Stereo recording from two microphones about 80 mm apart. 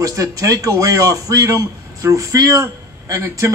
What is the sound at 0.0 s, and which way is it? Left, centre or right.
A man's voice, right.